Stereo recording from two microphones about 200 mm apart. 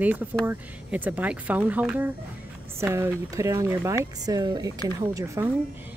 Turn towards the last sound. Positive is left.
turn(degrees=-15)  # may be behind; listen again after turning